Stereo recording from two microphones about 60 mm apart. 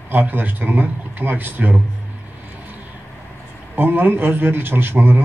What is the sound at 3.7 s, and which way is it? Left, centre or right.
Speech, right.